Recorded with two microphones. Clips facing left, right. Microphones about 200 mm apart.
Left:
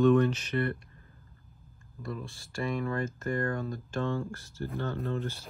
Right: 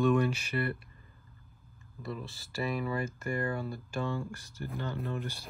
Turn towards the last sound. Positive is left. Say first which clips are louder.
# left 3 dB
turn(degrees=-15)  # may be behind; listen again after turning